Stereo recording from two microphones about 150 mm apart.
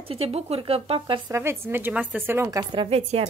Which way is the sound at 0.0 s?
40° right (ahead or behind).